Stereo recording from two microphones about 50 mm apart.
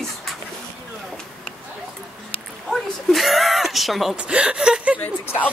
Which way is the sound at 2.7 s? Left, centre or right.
Centre.